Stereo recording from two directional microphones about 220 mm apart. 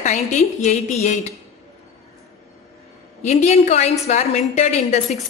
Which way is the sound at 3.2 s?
30° left (ahead or behind).